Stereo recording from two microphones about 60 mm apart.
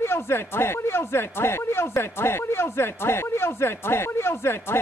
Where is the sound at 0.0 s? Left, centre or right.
Left.